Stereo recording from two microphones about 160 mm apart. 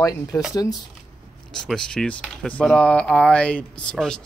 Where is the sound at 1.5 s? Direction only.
5° left (ahead or behind).